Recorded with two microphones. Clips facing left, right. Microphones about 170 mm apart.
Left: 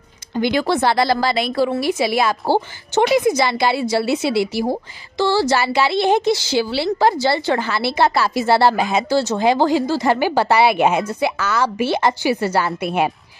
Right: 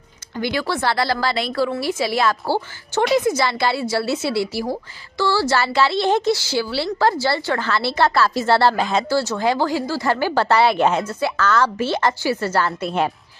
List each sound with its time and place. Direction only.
0.3 s a woman's voice: 20° left (ahead or behind)